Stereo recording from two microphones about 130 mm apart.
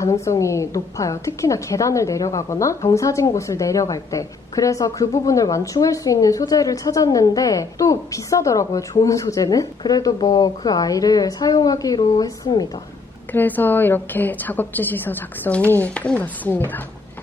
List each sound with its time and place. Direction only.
0.0 s a woman's voice: 20° left (ahead or behind)
13.3 s a woman's voice: 15° left (ahead or behind)